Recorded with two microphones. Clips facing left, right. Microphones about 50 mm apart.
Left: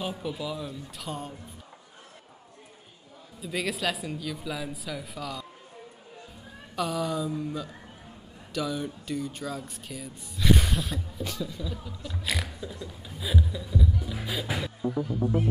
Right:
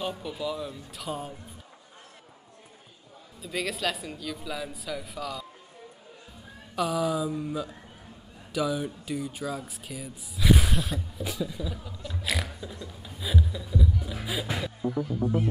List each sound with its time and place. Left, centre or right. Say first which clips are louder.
0.0 s speech: right 1 dB; centre
3.4 s speech: left 1 dB; centre
6.7 s speech: right 2 dB; centre
15.2 s music: even; left